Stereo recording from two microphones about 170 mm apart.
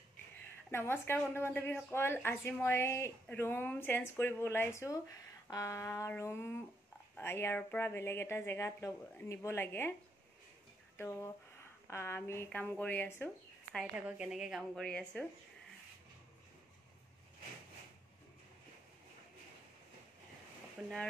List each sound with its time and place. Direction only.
0.7 s speech: 15° left (ahead or behind)
11.0 s speech: 15° left (ahead or behind)
13.9 s a woman's voice: 10° right (ahead or behind)
20.8 s speech: 5° right (ahead or behind)